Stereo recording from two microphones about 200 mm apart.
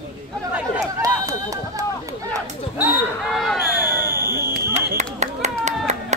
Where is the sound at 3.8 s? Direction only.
10° right (ahead or behind).